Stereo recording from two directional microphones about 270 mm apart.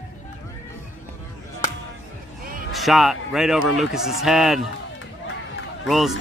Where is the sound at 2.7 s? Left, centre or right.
Centre.